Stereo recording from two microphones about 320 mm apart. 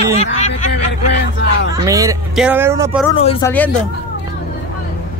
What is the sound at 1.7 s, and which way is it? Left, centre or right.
Speech, centre.